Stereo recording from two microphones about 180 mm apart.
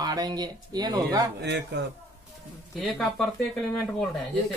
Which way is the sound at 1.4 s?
70° right (ahead or behind).